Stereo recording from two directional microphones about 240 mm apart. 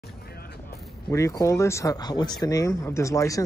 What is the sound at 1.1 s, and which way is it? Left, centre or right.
Speech, centre.